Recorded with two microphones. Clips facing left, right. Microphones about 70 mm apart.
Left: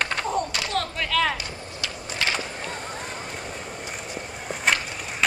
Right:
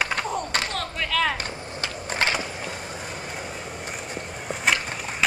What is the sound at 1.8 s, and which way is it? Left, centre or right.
Skateboard, right.